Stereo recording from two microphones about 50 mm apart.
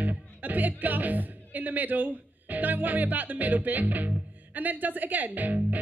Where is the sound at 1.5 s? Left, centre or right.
Right.